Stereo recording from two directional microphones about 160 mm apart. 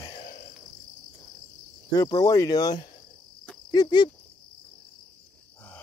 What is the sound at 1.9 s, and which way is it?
Speech, 25° left (ahead or behind).